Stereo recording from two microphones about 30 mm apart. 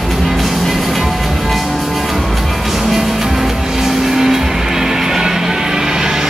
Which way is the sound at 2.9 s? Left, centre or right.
Centre.